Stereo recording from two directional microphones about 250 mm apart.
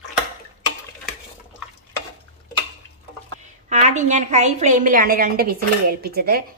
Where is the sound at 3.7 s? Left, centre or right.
Right.